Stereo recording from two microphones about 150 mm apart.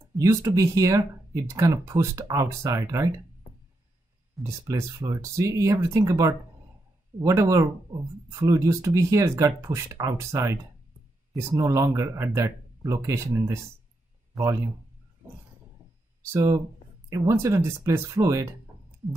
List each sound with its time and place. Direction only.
0.2 s speech: 20° right (ahead or behind)
4.4 s speech: 20° right (ahead or behind)
16.2 s speech: 15° right (ahead or behind)